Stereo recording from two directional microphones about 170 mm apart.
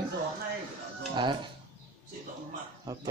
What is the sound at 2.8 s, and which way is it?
Speech, 25° right (ahead or behind).